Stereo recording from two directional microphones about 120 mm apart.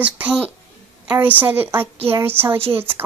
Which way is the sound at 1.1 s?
15° right (ahead or behind).